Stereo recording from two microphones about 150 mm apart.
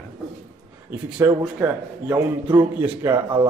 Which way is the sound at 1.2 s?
15° right (ahead or behind).